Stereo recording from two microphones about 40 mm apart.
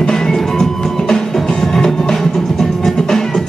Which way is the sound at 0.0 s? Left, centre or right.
Centre.